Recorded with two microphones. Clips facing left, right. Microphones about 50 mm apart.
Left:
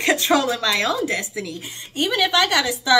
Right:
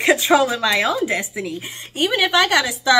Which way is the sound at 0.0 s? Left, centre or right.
Centre.